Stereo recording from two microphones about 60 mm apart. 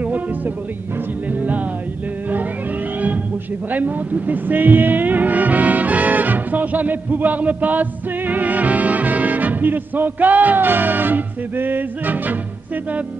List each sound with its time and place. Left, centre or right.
3.7 s speech: right